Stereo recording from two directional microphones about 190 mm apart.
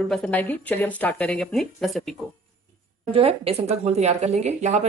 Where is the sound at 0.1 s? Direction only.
5° left (ahead or behind).